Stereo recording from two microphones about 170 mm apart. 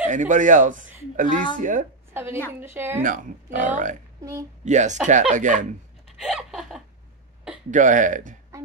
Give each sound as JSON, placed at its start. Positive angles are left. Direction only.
{"t": 0.0, "sound": "speech", "side_deg": -45}
{"t": 2.1, "sound": "a woman's voice", "side_deg": -15}
{"t": 3.0, "sound": "speech", "side_deg": -50}
{"t": 4.2, "sound": "speech", "side_deg": -20}
{"t": 4.6, "sound": "speech", "side_deg": -45}
{"t": 6.0, "sound": "a sound", "side_deg": 0}
{"t": 7.7, "sound": "speech", "side_deg": -50}